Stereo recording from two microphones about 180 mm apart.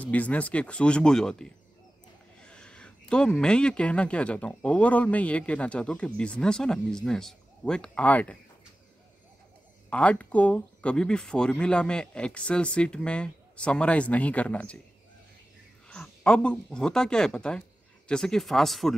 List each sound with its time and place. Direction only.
0.0 s speech: 10° left (ahead or behind)
9.8 s speech: 5° left (ahead or behind)
15.9 s speech: 5° left (ahead or behind)